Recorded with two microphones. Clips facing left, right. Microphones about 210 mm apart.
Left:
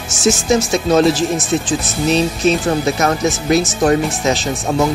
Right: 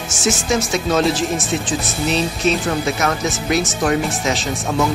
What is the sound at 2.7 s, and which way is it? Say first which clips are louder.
Speech: left 4 dB; 35° left (ahead or behind).